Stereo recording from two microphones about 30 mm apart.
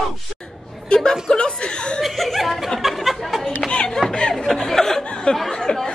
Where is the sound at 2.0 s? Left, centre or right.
Centre.